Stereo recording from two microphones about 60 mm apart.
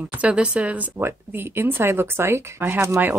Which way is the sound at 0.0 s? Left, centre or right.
Right.